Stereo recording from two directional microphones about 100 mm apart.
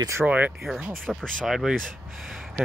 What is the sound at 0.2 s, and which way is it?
Speech, 15° right (ahead or behind).